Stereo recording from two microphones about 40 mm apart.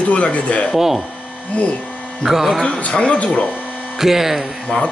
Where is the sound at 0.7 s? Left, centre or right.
Centre.